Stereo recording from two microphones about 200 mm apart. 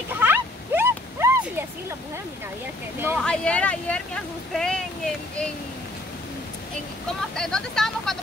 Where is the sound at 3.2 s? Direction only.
5° left (ahead or behind).